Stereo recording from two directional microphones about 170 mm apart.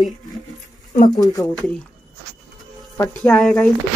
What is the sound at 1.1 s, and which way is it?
Speech, 20° left (ahead or behind).